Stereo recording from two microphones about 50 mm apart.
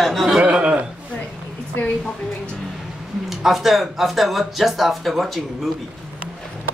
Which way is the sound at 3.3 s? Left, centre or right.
Centre.